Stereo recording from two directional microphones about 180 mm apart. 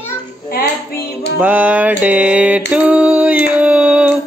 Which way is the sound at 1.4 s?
10° right (ahead or behind).